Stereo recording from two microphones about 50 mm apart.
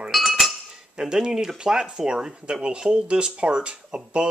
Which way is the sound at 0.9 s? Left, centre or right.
Centre.